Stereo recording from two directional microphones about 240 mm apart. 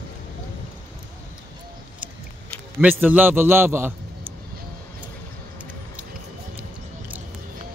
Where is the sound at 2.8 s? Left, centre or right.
Centre.